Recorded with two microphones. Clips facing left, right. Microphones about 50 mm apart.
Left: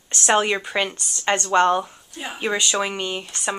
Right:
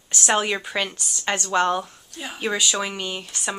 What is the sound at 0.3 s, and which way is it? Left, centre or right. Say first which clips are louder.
Speech: left 3 dB; centre.